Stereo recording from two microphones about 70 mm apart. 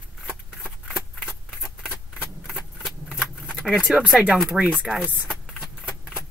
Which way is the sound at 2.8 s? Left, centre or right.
Centre.